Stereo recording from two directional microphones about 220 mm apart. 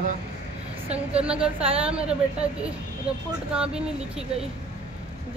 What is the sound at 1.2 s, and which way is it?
Speech, 5° right (ahead or behind).